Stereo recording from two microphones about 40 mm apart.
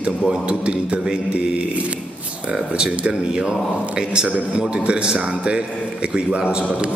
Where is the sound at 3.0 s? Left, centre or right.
Right.